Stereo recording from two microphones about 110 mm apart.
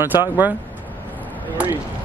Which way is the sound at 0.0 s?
20° right (ahead or behind).